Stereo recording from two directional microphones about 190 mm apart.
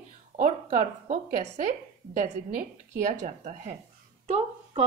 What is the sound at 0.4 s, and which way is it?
A woman's voice, 45° right (ahead or behind).